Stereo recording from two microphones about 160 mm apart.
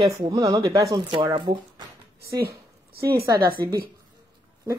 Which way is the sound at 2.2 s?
75° right (ahead or behind).